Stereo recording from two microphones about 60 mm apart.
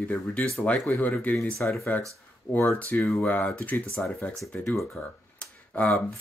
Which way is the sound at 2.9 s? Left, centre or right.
Left.